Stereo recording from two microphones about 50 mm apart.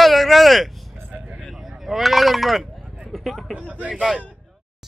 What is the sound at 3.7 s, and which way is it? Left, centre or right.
Speech, right.